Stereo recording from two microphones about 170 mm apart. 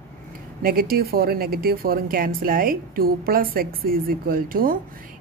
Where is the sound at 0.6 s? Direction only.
60° right (ahead or behind).